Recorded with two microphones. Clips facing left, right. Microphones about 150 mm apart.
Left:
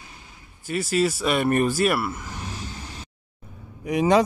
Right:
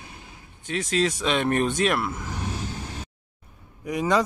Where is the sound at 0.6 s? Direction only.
5° left (ahead or behind).